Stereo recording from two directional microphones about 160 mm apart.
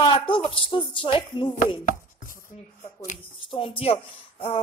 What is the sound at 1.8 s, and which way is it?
Chopping, 60° left (ahead or behind).